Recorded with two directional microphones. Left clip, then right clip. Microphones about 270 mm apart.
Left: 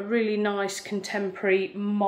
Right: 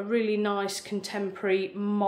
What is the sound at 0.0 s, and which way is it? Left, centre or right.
Speech, centre.